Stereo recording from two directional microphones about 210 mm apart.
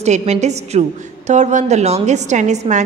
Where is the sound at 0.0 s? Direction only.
30° right (ahead or behind).